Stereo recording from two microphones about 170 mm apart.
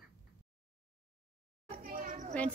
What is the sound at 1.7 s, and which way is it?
Children playing, 55° right (ahead or behind).